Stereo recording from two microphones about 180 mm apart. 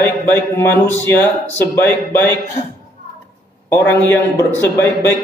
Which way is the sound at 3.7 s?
10° left (ahead or behind).